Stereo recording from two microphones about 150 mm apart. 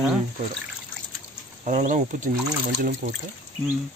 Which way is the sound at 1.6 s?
55° right (ahead or behind).